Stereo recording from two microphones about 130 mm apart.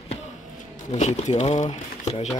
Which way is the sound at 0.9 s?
60° left (ahead or behind).